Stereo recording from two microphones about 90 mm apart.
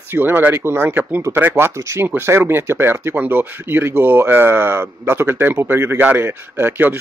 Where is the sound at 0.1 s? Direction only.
20° right (ahead or behind).